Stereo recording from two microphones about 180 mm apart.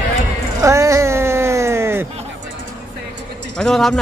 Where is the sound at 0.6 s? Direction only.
15° right (ahead or behind).